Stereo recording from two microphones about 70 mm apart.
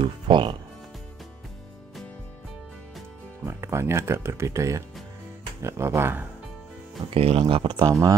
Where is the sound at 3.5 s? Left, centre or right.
Right.